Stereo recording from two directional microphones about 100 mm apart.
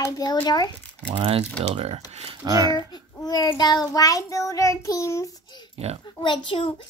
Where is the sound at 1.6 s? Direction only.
90° right.